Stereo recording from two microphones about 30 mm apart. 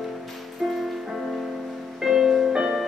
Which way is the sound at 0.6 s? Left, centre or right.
Centre.